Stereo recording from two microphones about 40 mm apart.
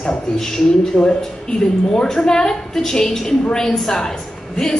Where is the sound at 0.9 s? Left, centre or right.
Left.